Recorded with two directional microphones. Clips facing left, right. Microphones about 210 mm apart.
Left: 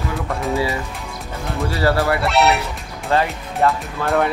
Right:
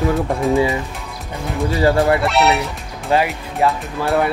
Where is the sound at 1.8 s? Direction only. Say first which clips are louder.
Right 4 dB; 15° right (ahead or behind).